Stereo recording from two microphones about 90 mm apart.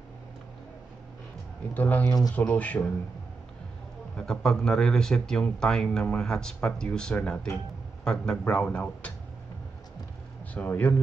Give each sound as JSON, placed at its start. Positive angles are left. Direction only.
{"t": 1.7, "sound": "speech", "side_deg": 20}
{"t": 2.0, "sound": "speech", "side_deg": 45}
{"t": 2.3, "sound": "speech", "side_deg": 15}
{"t": 4.2, "sound": "speech", "side_deg": 5}
{"t": 10.5, "sound": "speech", "side_deg": 15}